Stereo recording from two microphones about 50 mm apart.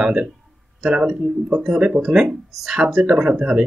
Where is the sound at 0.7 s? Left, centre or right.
Centre.